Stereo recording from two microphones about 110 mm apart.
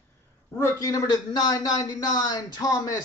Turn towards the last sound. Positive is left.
turn(degrees=30)  # may be behind; listen again after turning